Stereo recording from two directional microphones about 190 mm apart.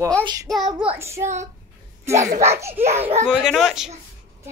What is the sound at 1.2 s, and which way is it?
Speech, 35° right (ahead or behind).